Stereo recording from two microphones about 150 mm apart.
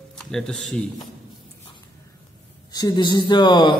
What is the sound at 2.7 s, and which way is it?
Speech, 25° left (ahead or behind).